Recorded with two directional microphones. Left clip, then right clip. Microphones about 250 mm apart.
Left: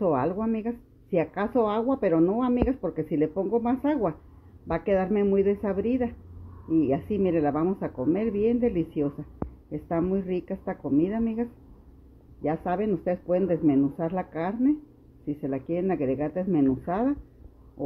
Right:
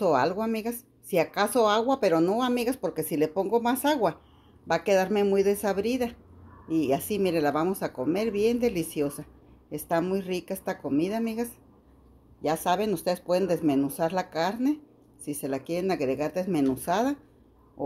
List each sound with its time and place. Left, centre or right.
0.0 s speech: centre